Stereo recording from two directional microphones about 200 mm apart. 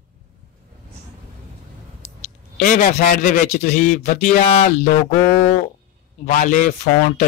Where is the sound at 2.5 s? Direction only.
40° left (ahead or behind).